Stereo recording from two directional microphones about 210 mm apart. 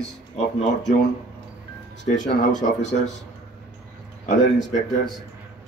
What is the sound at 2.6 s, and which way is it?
Speech, 40° left (ahead or behind).